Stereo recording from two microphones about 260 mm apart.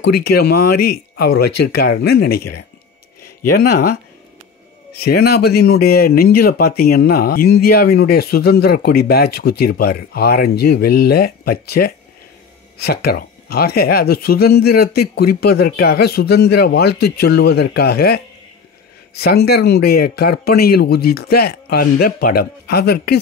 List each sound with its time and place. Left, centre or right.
0.2 s speech: left
1.5 s speech: left
1.8 s speech: left
3.5 s speech: left